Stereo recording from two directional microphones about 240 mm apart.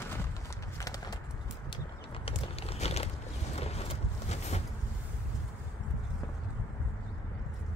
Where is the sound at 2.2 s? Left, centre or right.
Left.